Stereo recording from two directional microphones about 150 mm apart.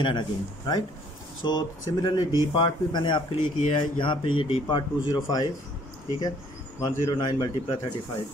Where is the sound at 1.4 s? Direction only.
30° left (ahead or behind).